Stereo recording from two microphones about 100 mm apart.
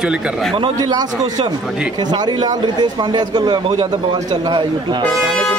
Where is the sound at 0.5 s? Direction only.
50° right (ahead or behind).